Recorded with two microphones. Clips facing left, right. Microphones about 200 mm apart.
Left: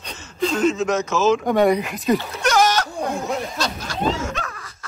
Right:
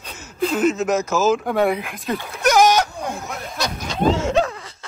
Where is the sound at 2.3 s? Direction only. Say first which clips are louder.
Right 3 dB; 5° right (ahead or behind).